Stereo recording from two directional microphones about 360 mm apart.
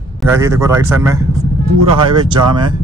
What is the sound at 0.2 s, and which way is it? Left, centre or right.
Speech, centre.